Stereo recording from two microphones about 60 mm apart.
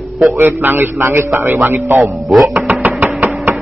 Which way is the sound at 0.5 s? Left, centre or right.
Right.